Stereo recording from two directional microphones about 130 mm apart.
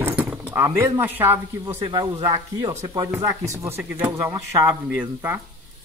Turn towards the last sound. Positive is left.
turn(degrees=-15)  # may be behind; listen again after turning